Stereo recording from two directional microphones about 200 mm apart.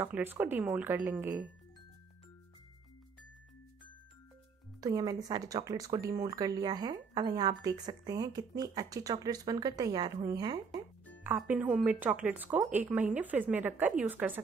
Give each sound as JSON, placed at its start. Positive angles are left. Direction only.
{"t": 0.0, "sound": "speech", "side_deg": -10}
{"t": 4.7, "sound": "speech", "side_deg": -20}